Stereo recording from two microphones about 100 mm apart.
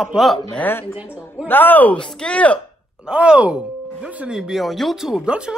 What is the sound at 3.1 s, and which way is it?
Speech, 10° right (ahead or behind).